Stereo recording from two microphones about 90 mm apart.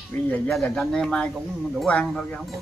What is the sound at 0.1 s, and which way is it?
Speech, 20° left (ahead or behind).